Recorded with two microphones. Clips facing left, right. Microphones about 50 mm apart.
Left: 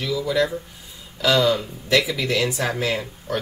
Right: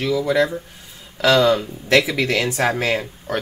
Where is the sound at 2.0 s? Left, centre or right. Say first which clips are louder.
Right 2 dB; right.